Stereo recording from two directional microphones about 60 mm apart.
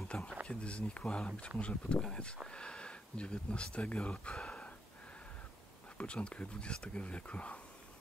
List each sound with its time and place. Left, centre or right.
0.1 s speech: centre
5.9 s speech: centre